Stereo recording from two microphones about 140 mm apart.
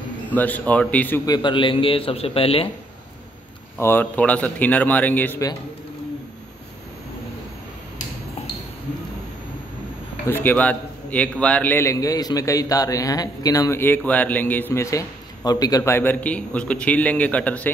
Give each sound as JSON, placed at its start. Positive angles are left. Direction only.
{"t": 0.3, "sound": "a man's voice", "side_deg": 10}
{"t": 1.2, "sound": "a man's voice", "side_deg": 30}
{"t": 3.7, "sound": "a man's voice", "side_deg": 15}
{"t": 10.2, "sound": "a man's voice", "side_deg": 15}